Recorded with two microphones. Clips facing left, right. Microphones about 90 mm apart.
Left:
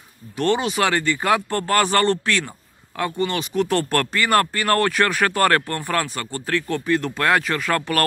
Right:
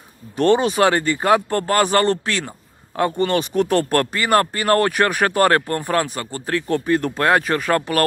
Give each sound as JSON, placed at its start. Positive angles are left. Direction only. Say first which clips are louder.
{"t": 0.4, "sound": "speech", "louder": "right 5 dB", "side_deg": -35}
{"t": 3.2, "sound": "speech", "louder": "right 2 dB", "side_deg": -45}
{"t": 3.7, "sound": "speech", "louder": "right 3 dB", "side_deg": -30}